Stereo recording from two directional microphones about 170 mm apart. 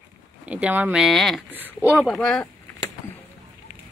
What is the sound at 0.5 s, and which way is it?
Speech, 10° right (ahead or behind).